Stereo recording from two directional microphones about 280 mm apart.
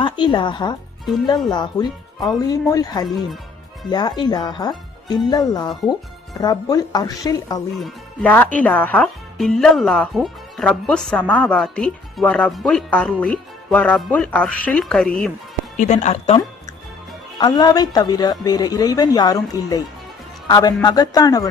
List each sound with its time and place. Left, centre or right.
0.0 s a woman's voice: centre
15.8 s speech: left